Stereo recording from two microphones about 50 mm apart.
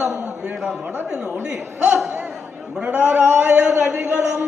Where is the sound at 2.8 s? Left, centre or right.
Right.